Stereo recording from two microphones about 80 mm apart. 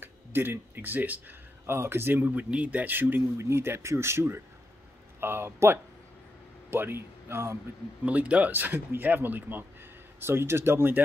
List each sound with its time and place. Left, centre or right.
0.0 s speech: right
8.0 s speech: centre